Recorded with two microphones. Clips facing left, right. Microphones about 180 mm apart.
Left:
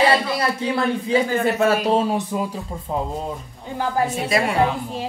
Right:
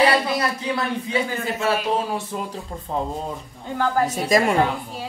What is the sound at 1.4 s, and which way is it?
Speech, 50° left (ahead or behind).